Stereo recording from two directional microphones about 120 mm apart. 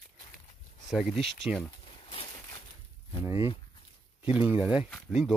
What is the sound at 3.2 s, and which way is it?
Speech, 20° right (ahead or behind).